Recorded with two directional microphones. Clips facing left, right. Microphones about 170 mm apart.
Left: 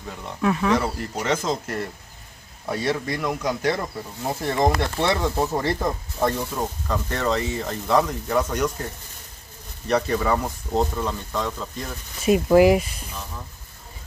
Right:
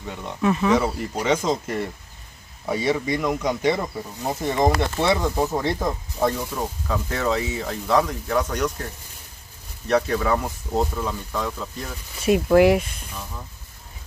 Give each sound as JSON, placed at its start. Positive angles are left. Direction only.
{"t": 0.0, "sound": "speech", "side_deg": 0}
{"t": 4.2, "sound": "speech", "side_deg": -15}
{"t": 4.6, "sound": "speech", "side_deg": 0}
{"t": 9.8, "sound": "speech", "side_deg": 0}